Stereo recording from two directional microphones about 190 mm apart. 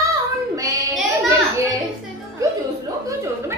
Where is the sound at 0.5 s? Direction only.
15° right (ahead or behind).